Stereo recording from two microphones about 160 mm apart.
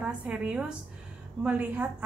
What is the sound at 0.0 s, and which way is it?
A woman's voice, 5° right (ahead or behind).